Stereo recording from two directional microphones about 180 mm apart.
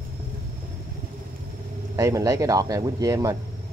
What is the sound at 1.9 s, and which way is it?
Speech, 20° right (ahead or behind).